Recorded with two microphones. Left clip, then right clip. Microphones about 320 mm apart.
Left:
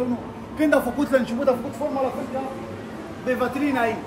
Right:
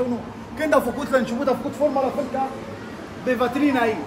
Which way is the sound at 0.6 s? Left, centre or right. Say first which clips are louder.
Even; right.